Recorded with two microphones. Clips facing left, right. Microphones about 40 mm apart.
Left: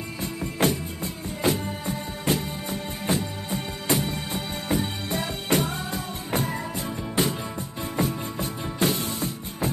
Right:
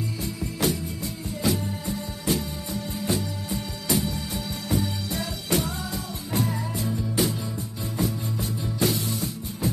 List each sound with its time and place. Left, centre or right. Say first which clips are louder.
0.2 s music: left 4 dB; left